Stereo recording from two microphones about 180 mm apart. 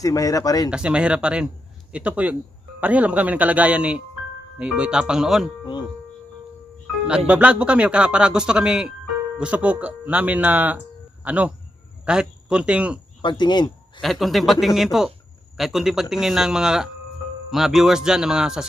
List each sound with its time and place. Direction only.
0.0 s speech: 20° left (ahead or behind)
0.7 s speech: 5° right (ahead or behind)
7.2 s speech: 5° right (ahead or behind)
13.2 s speech: 25° left (ahead or behind)
14.0 s speech: centre (ahead or behind)